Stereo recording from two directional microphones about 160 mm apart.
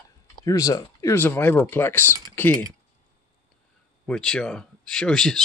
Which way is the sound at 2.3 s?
15° left (ahead or behind).